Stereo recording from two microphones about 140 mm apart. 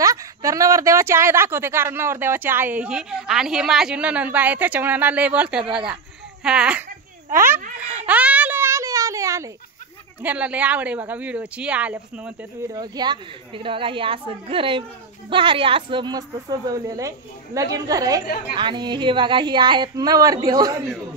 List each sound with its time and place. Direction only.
0.0 s a woman's voice: 25° right (ahead or behind); by 6.8 s 5° right (ahead or behind)
8.1 s a sound: 10° right (ahead or behind)
10.2 s a woman's voice: 10° right (ahead or behind)
12.7 s a woman's voice: 30° right (ahead or behind)